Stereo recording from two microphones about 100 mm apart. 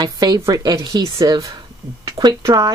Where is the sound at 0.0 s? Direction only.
40° right (ahead or behind).